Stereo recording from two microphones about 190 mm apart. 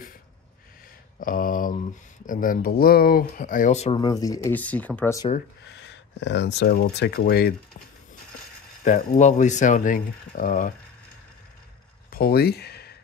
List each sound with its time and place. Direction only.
1.2 s speech: 45° left (ahead or behind)
4.0 s speech: 20° left (ahead or behind)
5.7 s speech: 70° left (ahead or behind)
8.8 s speech: 40° left (ahead or behind)
12.1 s speech: 50° left (ahead or behind)